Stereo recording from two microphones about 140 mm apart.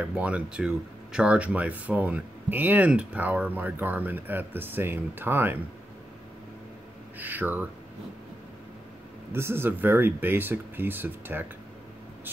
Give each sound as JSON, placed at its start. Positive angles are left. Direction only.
{"t": 0.0, "sound": "speech", "side_deg": -10}
{"t": 7.2, "sound": "speech", "side_deg": -15}
{"t": 9.3, "sound": "speech", "side_deg": -15}